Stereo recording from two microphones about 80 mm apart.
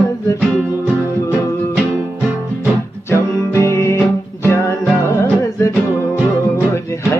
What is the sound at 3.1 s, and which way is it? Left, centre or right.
Music, left.